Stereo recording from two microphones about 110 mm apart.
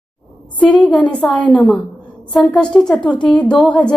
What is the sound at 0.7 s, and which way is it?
A woman's voice, 10° left (ahead or behind).